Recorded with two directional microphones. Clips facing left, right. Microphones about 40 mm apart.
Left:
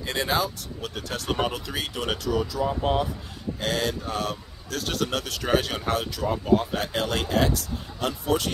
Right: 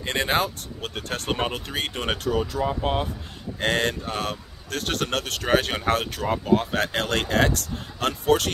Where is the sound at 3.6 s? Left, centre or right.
Right.